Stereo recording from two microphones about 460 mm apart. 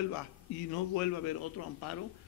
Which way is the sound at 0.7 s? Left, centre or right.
Left.